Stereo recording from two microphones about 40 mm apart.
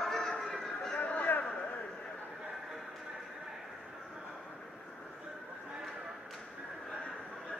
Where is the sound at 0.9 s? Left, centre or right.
Left.